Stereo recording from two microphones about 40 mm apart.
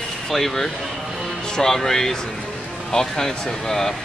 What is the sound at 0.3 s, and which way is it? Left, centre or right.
Speech, centre.